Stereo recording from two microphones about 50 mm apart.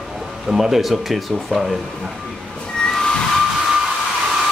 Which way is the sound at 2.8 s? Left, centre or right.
Centre.